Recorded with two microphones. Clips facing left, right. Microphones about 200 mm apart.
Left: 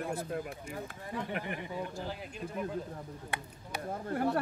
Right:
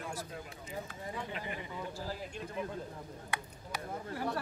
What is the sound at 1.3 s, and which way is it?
Speech, 60° left (ahead or behind).